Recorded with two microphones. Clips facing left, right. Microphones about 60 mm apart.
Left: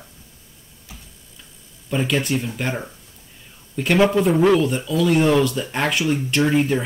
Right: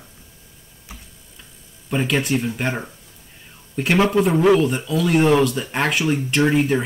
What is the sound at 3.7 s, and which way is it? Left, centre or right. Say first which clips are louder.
Speech: even; centre.